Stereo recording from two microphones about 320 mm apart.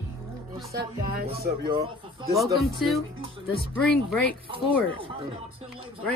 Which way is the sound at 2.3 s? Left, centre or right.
Centre.